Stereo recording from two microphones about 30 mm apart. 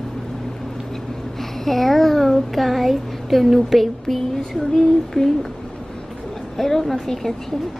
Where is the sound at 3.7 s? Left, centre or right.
Centre.